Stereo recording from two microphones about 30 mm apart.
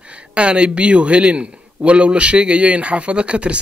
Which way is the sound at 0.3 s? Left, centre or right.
Right.